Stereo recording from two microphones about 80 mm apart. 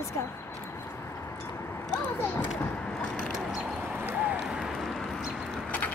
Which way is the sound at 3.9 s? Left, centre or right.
Right.